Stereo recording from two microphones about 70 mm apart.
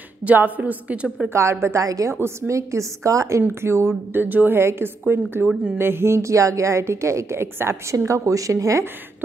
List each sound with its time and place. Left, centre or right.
0.2 s speech: right
1.0 s a woman's voice: centre
1.3 s a woman's voice: right
2.1 s a woman's voice: right
3.4 s a woman's voice: right
7.9 s a woman's voice: right